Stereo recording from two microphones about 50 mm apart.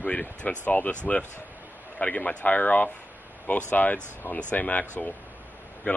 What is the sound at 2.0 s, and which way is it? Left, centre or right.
Speech, left.